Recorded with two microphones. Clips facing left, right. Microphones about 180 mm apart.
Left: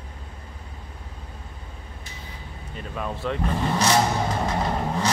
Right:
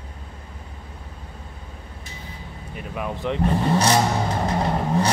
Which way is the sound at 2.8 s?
15° right (ahead or behind).